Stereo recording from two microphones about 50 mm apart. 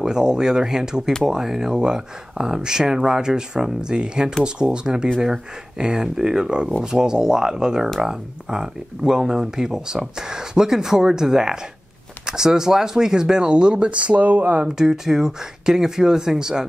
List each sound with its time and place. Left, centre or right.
0.0 s speech: centre; by 14.6 s right
14.6 s speech: centre